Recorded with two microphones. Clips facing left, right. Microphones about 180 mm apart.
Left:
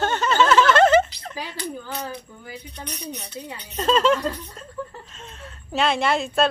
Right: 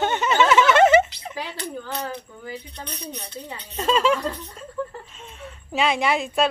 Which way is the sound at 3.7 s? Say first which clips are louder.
Left 1 dB; 10° right (ahead or behind).